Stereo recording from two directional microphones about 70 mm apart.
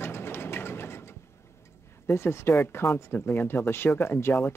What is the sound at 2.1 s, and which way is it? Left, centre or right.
Speech, left.